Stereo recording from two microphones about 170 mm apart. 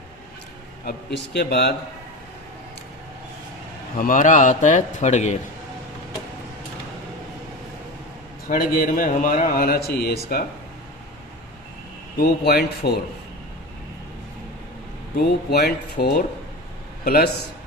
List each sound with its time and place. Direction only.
0.8 s speech: 80° left
4.0 s a man's voice: 50° left (ahead or behind)
8.5 s a man's voice: 55° left (ahead or behind)
12.2 s speech: 70° left (ahead or behind)
15.1 s a man's voice: 70° left (ahead or behind)